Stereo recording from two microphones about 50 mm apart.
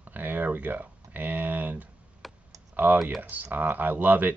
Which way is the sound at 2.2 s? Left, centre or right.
Centre.